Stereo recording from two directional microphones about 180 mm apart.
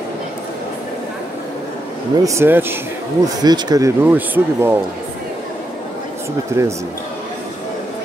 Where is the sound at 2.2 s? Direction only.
15° right (ahead or behind).